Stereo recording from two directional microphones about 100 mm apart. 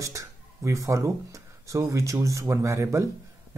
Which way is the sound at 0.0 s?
35° right (ahead or behind).